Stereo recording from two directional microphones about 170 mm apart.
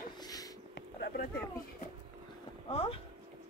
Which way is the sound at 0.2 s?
20° left (ahead or behind).